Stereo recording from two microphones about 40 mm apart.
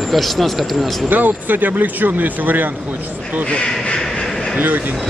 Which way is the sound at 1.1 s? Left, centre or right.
Right.